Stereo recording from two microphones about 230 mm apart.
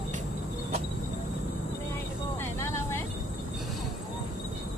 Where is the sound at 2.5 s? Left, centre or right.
Centre.